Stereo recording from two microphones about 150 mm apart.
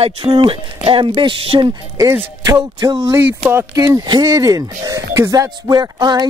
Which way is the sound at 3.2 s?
10° right (ahead or behind).